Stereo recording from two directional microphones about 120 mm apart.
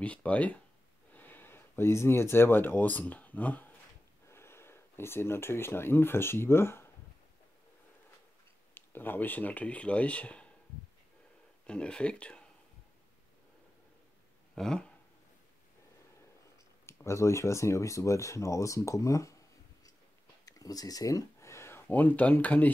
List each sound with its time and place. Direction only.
0.0 s speech: 10° left (ahead or behind)
8.7 s speech: 15° left (ahead or behind)
11.6 s speech: 10° left (ahead or behind)
14.5 s a sound: 5° left (ahead or behind)
16.8 s speech: 25° left (ahead or behind)
20.4 s speech: 30° left (ahead or behind); by 22.7 s 15° left (ahead or behind)